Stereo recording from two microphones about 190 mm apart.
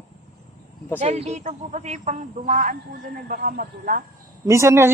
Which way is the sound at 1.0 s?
35° right (ahead or behind).